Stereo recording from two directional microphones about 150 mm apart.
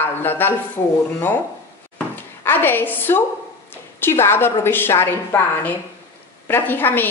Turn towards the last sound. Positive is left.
turn(degrees=15)  # may be behind; listen again after turning